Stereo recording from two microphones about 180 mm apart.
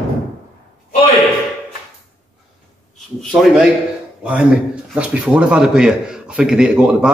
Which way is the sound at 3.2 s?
Centre (ahead or behind).